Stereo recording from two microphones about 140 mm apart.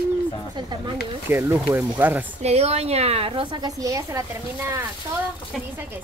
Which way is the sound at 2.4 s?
50° right (ahead or behind).